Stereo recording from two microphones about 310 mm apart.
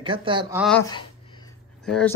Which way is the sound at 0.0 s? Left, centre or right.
Centre.